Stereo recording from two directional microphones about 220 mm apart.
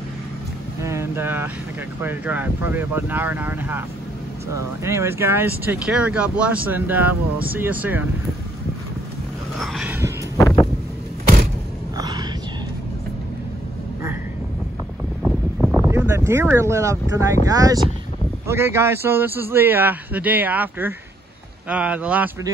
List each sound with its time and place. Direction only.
0.8 s speech: 10° right (ahead or behind)
4.8 s speech: 10° right (ahead or behind)
9.6 s a sound: centre (ahead or behind)
10.3 s wind noise: 15° left (ahead or behind)
12.0 s a sound: 20° right (ahead or behind)
15.2 s wind noise: 5° left (ahead or behind)
15.9 s a man's voice: 10° right (ahead or behind)